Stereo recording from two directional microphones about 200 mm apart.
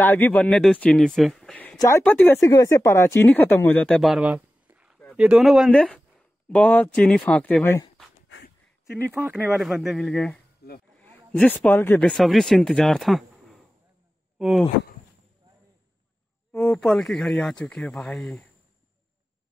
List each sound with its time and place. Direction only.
0.0 s speech: 10° left (ahead or behind)
9.1 s speech: 10° right (ahead or behind)
10.6 s speech: 50° left (ahead or behind)
11.0 s speech: 5° left (ahead or behind)
16.5 s speech: 5° left (ahead or behind)